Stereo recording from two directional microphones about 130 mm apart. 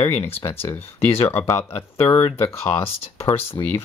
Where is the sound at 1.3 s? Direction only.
20° left (ahead or behind).